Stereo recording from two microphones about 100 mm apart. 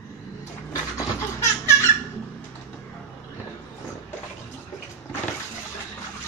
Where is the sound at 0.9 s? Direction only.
25° left (ahead or behind).